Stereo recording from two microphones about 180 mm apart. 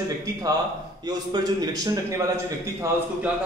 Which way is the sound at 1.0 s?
20° right (ahead or behind).